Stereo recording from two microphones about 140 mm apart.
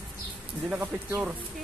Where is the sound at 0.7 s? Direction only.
15° right (ahead or behind).